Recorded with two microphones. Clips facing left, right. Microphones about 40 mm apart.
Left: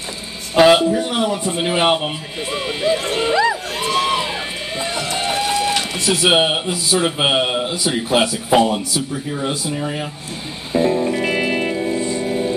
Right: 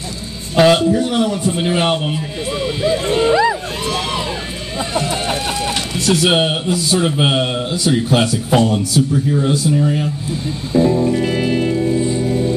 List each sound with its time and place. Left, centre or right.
0.6 s speech: centre
3.8 s a sound: centre
4.7 s speech: centre
10.7 s music: centre